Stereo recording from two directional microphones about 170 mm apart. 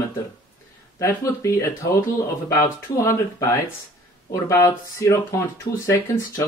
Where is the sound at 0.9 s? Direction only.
15° left (ahead or behind).